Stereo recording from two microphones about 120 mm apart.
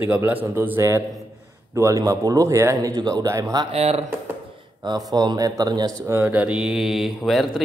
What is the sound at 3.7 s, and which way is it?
Speech, 55° right (ahead or behind).